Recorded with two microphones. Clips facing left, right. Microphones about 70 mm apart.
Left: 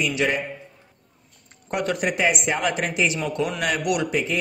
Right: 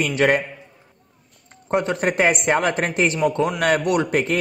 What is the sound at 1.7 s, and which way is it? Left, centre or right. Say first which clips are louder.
Speech: right 4 dB; right.